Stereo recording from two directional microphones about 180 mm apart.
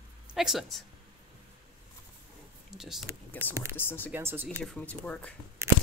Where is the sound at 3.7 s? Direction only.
10° left (ahead or behind).